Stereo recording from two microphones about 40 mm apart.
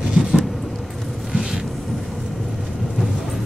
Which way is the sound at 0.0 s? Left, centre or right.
Centre.